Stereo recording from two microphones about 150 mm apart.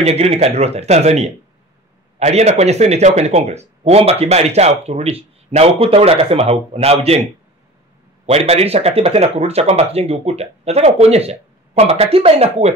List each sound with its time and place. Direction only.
0.0 s speech: 45° right (ahead or behind)
8.3 s speech: 45° right (ahead or behind)